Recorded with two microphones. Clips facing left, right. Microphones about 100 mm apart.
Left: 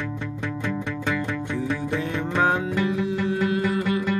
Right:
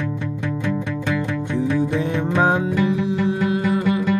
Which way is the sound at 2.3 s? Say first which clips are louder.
Right 3 dB; 15° right (ahead or behind).